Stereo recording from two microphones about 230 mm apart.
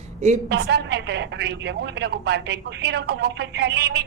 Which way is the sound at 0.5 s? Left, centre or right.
Right.